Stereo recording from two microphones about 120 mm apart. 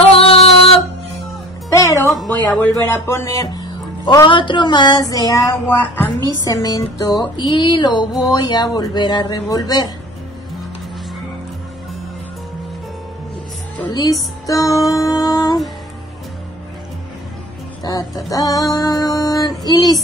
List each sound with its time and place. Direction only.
0.1 s music: 55° left (ahead or behind)
1.7 s music: 25° left (ahead or behind)
2.1 s speech: 10° left (ahead or behind); by 5.0 s 40° left (ahead or behind)
5.1 s child singing: 30° left (ahead or behind)
5.9 s a woman's voice: 15° left (ahead or behind)
6.4 s speech: 30° left (ahead or behind)
13.8 s speech: 35° left (ahead or behind)
14.4 s music: 30° left (ahead or behind)
17.8 s speech: 30° left (ahead or behind)